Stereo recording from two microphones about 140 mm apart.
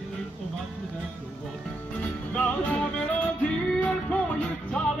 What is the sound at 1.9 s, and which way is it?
Music, 10° left (ahead or behind).